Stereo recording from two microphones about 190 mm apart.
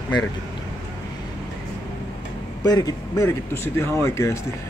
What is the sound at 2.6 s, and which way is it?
Speech, 20° left (ahead or behind).